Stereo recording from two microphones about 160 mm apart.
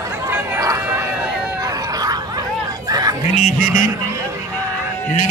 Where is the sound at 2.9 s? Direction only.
25° right (ahead or behind).